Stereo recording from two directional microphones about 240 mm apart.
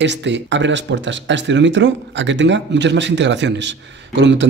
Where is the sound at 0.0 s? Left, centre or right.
Right.